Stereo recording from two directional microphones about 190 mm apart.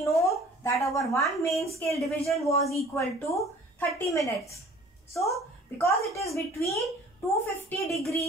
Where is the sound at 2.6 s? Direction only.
35° left (ahead or behind).